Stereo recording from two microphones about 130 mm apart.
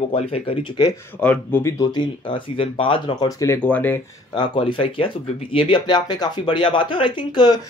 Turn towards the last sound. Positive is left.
turn(degrees=35)  # may be behind; listen again after turning